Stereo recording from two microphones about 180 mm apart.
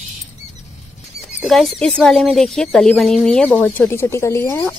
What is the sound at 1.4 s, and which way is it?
Speech, centre (ahead or behind).